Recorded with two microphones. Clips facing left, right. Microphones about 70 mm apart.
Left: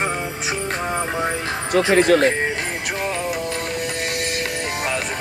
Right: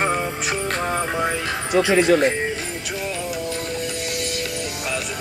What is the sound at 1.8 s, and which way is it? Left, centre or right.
Speech, left.